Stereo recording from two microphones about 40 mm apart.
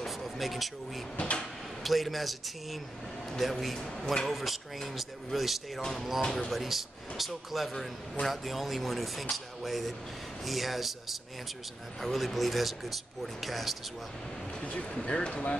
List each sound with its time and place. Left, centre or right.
0.0 s speech: centre
1.1 s speech: left
1.8 s a man's voice: centre
4.3 s speech: centre
14.6 s speech: left